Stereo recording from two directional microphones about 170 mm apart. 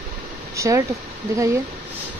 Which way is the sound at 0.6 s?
20° right (ahead or behind).